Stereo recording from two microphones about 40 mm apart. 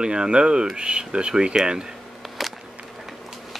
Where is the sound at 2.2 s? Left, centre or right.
Centre.